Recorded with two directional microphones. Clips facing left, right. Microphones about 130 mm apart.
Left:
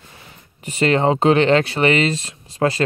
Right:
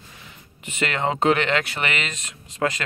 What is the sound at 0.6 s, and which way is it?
Speech, 35° left (ahead or behind).